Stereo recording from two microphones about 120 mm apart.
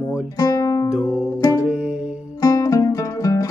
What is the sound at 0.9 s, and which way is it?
Speech, 10° right (ahead or behind).